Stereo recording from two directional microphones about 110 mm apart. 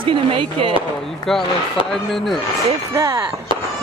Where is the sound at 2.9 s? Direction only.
30° right (ahead or behind).